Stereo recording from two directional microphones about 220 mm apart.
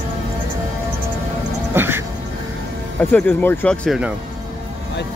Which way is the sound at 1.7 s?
10° right (ahead or behind).